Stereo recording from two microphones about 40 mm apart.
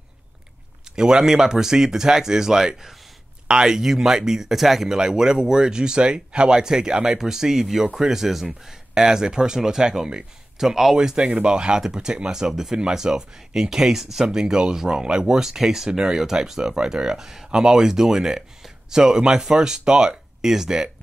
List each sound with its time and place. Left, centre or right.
0.9 s speech: centre
11.0 s speech: right